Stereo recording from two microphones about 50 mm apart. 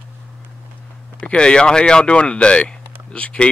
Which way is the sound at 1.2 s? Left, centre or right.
Centre.